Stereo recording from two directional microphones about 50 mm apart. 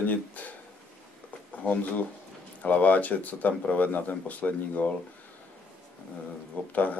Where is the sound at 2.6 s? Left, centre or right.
Left.